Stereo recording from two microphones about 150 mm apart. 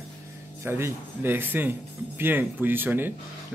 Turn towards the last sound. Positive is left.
turn(degrees=-15)  # may be behind; listen again after turning